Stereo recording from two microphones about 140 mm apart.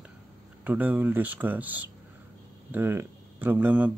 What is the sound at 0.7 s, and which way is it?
Speech, 10° right (ahead or behind).